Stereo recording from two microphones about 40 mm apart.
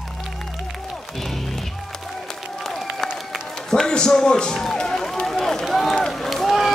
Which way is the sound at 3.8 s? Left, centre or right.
Centre.